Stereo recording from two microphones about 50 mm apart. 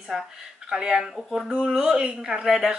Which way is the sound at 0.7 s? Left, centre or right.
Centre.